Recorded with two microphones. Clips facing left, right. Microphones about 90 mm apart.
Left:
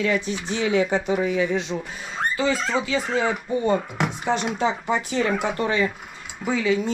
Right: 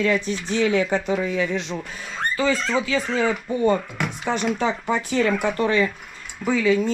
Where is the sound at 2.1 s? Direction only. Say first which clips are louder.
Right 1 dB; 5° left (ahead or behind).